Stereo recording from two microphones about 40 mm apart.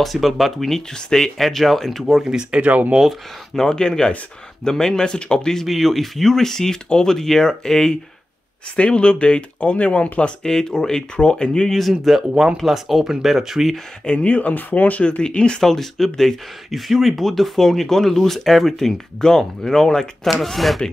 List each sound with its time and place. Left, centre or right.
0.0 s speech: centre
2.2 s speech: centre
2.6 s speech: right
2.9 s speech: centre
3.5 s speech: centre
5.7 s speech: centre
8.7 s speech: left
10.4 s speech: centre
11.9 s speech: centre
14.0 s speech: left
15.0 s speech: left
15.6 s speech: centre